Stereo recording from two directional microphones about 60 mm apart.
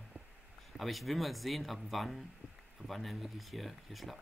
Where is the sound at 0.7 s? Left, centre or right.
Centre.